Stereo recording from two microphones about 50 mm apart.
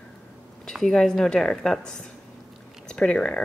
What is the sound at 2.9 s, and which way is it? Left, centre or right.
Speech, left.